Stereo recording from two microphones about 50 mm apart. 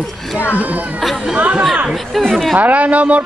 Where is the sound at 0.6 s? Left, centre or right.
Right.